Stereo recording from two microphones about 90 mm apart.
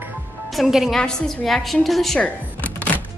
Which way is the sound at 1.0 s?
5° left (ahead or behind).